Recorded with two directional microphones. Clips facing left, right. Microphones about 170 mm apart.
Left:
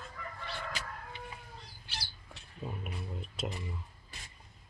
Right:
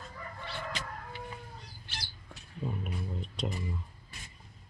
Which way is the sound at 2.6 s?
5° left (ahead or behind).